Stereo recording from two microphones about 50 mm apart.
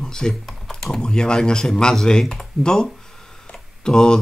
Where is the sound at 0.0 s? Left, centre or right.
Centre.